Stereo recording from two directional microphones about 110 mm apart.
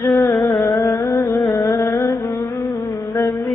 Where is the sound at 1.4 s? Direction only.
20° left (ahead or behind).